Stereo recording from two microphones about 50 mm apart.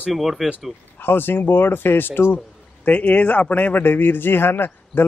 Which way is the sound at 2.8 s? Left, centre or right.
Left.